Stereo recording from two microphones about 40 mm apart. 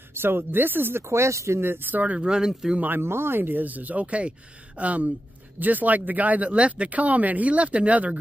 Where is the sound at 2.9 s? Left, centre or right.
Right.